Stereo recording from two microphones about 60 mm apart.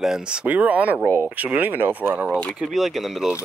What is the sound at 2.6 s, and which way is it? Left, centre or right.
Speech, centre.